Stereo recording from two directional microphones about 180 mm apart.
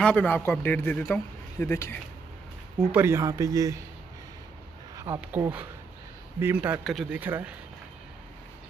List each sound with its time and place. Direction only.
0.0 s a man's voice: 5° left (ahead or behind)
2.9 s speech: 15° right (ahead or behind)
4.9 s a sound: 20° right (ahead or behind)
5.2 s speech: 10° right (ahead or behind)
6.8 s speech: centre (ahead or behind)